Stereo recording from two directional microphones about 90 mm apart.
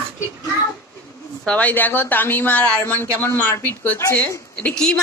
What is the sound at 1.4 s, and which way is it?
Speech, 15° left (ahead or behind).